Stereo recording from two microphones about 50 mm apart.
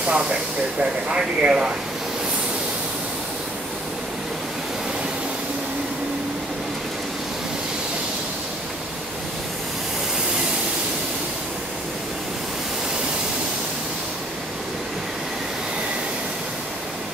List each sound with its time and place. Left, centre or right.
0.1 s speech: centre